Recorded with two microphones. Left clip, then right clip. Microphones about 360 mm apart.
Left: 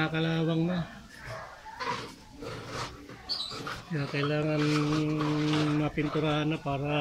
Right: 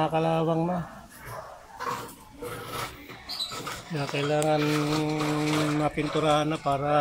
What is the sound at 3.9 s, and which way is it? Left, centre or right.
Speech, right.